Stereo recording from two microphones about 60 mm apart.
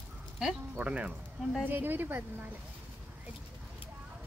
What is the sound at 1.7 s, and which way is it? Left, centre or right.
Speech, right.